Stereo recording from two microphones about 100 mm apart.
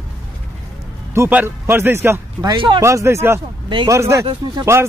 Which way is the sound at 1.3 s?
20° right (ahead or behind).